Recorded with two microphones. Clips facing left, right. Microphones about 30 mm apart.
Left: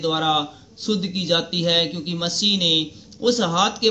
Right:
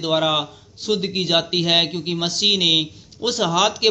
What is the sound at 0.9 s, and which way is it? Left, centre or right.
Speech, right.